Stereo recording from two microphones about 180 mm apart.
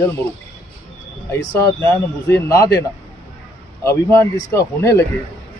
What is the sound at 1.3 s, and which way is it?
A man's voice, 15° left (ahead or behind).